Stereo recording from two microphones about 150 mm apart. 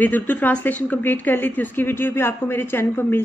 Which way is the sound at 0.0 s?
10° left (ahead or behind).